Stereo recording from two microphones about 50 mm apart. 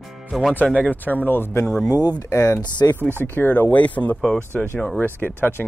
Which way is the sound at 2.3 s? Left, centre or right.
Left.